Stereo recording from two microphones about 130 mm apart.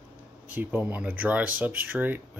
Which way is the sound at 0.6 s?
15° right (ahead or behind).